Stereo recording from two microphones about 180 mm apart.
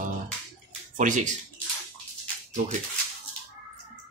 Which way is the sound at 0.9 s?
45° right (ahead or behind).